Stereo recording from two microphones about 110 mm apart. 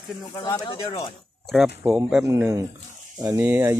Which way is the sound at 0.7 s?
55° left (ahead or behind).